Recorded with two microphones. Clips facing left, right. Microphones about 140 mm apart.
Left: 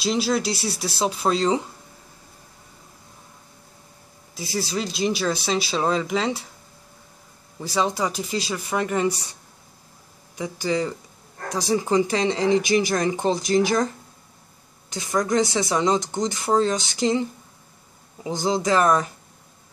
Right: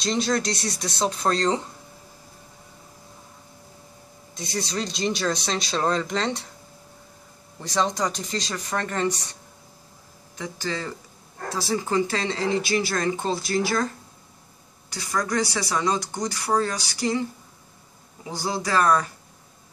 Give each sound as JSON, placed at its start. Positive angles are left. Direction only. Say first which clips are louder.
{"t": 0.0, "sound": "speech", "louder": "left 2 dB", "side_deg": 5}
{"t": 4.4, "sound": "speech", "louder": "left 2 dB", "side_deg": 5}
{"t": 7.5, "sound": "speech", "louder": "left 1 dB", "side_deg": 5}
{"t": 14.9, "sound": "speech", "louder": "left 4 dB", "side_deg": 20}
{"t": 18.3, "sound": "speech", "louder": "left 4 dB", "side_deg": 20}